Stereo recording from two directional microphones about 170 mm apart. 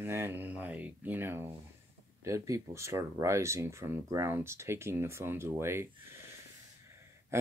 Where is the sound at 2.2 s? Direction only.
20° right (ahead or behind).